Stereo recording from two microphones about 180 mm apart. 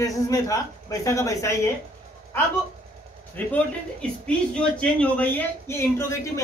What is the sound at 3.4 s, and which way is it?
A woman's voice, 10° left (ahead or behind).